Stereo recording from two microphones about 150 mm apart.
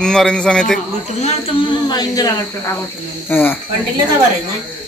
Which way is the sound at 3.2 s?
15° left (ahead or behind).